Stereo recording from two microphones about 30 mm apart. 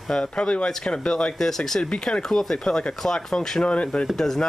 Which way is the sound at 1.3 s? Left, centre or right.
Centre.